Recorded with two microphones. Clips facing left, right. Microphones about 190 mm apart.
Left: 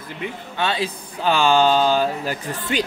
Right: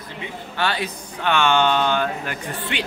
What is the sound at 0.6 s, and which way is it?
Speech, 25° left (ahead or behind).